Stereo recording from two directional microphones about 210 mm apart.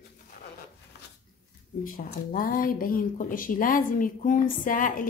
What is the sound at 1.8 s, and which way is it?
Speech, 40° left (ahead or behind).